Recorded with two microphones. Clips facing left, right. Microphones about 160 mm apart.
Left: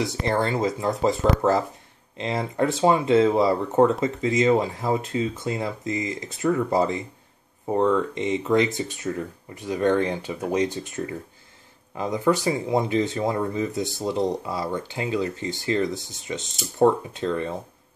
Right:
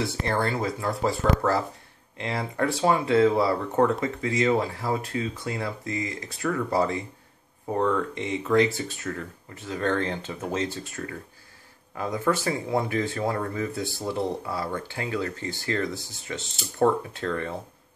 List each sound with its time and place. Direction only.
0.0 s speech: 20° left (ahead or behind)